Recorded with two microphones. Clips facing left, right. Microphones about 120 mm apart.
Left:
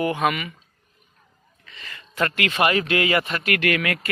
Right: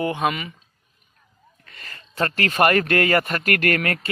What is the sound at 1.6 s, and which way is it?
Speech, 45° right (ahead or behind).